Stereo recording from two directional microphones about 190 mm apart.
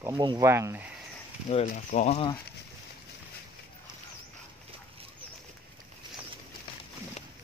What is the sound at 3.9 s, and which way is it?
Dog, 20° right (ahead or behind).